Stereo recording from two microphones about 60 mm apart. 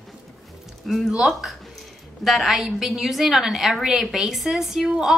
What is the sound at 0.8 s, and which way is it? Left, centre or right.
A woman's voice, centre.